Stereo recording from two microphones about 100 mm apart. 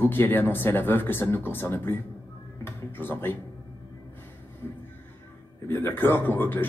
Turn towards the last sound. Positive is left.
turn(degrees=20)  # may be behind; listen again after turning